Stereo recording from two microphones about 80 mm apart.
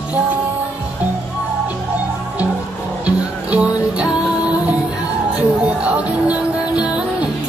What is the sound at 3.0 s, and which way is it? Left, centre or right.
Music, centre.